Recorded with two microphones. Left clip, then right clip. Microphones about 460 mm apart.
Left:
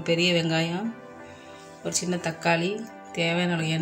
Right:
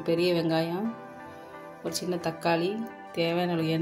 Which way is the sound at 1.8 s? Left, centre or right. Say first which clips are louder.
Left 2 dB; right.